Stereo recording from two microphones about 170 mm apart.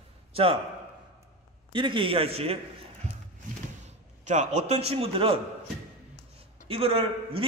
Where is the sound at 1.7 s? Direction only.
30° right (ahead or behind).